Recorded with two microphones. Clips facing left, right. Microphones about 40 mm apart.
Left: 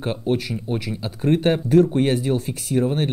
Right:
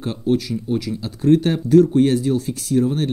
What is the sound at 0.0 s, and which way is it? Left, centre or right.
Speech, left.